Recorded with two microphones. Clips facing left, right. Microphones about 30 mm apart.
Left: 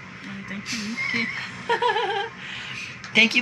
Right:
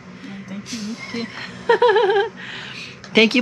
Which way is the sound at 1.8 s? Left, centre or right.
Right.